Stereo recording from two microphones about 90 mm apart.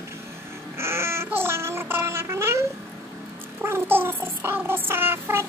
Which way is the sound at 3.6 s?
25° right (ahead or behind).